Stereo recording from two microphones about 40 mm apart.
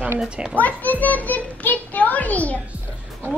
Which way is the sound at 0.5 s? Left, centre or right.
Left.